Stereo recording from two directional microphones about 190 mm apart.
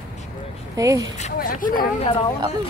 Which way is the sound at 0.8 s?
15° right (ahead or behind).